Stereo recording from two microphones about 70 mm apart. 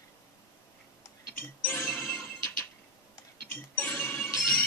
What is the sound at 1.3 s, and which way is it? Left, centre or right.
Music, left.